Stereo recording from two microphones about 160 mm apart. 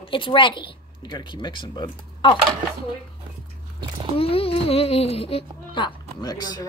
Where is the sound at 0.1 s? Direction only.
30° left (ahead or behind).